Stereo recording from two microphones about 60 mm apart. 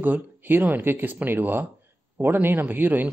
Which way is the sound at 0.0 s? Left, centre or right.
Right.